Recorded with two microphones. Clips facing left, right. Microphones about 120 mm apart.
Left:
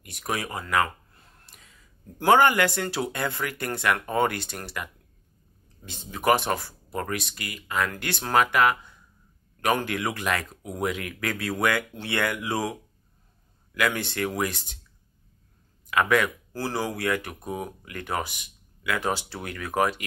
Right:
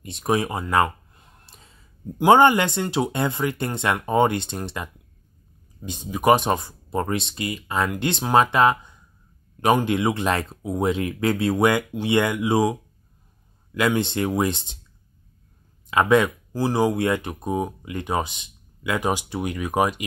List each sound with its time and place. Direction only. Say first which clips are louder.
0.0 s a sound: right 8 dB; 25° right (ahead or behind)
2.1 s speech: right 4 dB; 20° right (ahead or behind)
5.9 s speech: right 5 dB; 15° right (ahead or behind)
13.7 s speech: right 5 dB; 20° right (ahead or behind)
15.9 s speech: right 5 dB; 25° right (ahead or behind)